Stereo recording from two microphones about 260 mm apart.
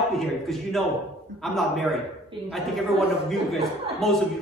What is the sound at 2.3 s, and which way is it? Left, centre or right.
Speech, centre.